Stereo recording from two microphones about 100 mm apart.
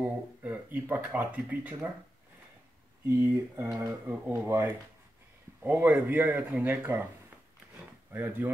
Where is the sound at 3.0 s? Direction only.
20° right (ahead or behind).